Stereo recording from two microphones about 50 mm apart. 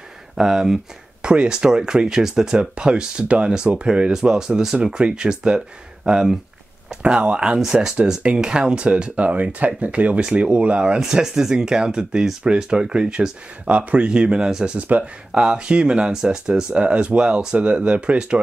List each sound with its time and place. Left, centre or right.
0.4 s speech: centre